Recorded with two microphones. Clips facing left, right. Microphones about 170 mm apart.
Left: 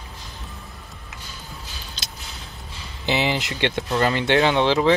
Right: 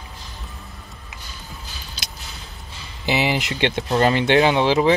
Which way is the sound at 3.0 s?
10° right (ahead or behind).